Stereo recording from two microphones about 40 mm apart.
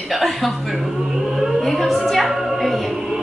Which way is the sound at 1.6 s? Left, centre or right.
Centre.